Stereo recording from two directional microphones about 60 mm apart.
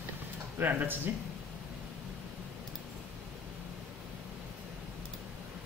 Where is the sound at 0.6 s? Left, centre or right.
Right.